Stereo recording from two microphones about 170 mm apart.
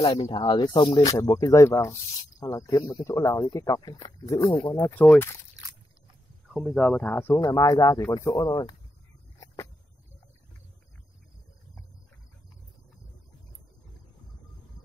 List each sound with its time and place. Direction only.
0.0 s speech: 30° left (ahead or behind); by 5.4 s 15° left (ahead or behind)
6.5 s speech: centre (ahead or behind); by 8.7 s 20° left (ahead or behind)